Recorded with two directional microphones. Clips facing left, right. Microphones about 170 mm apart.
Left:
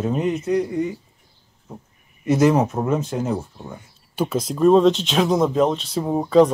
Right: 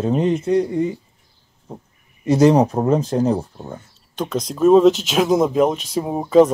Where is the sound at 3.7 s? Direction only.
10° left (ahead or behind).